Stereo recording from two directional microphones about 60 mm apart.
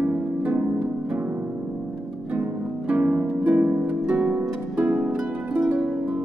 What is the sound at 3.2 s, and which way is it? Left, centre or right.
Harp, centre.